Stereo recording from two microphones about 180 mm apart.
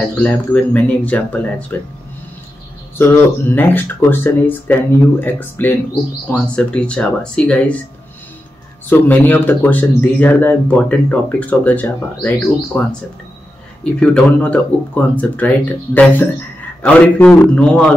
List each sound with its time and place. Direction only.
0.1 s speech: 10° left (ahead or behind)
3.0 s speech: 10° left (ahead or behind)
9.0 s speech: 10° left (ahead or behind)
13.9 s a man's voice: 5° left (ahead or behind)